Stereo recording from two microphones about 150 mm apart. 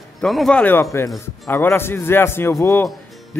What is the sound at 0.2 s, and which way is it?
Speech, centre (ahead or behind).